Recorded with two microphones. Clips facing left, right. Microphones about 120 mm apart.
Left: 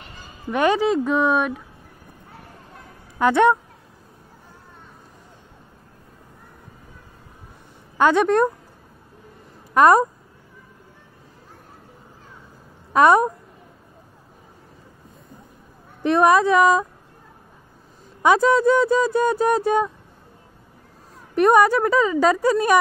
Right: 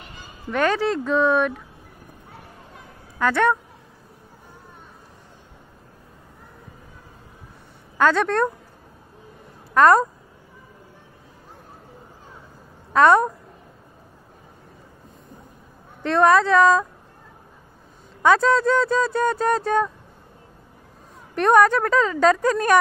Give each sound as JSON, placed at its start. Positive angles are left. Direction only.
{"t": 0.5, "sound": "speech", "side_deg": 15}
{"t": 3.2, "sound": "speech", "side_deg": 20}
{"t": 8.0, "sound": "speech", "side_deg": 15}
{"t": 9.8, "sound": "speech", "side_deg": 15}
{"t": 12.9, "sound": "speech", "side_deg": 15}
{"t": 16.0, "sound": "speech", "side_deg": 15}
{"t": 18.2, "sound": "speech", "side_deg": 15}
{"t": 21.4, "sound": "speech", "side_deg": 10}